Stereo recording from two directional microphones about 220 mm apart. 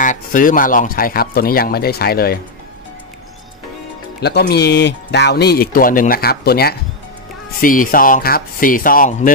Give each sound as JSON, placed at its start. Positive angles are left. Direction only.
{"t": 0.0, "sound": "speech", "side_deg": 35}
{"t": 4.2, "sound": "speech", "side_deg": 45}